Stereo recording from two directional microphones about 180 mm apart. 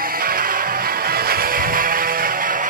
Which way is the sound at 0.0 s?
55° right (ahead or behind).